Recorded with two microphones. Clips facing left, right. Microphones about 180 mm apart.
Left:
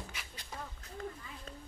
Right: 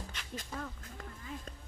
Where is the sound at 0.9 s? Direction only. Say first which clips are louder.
Left 1 dB; 45° right (ahead or behind).